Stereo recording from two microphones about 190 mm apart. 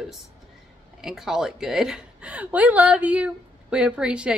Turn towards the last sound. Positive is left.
turn(degrees=-5)  # may be behind; listen again after turning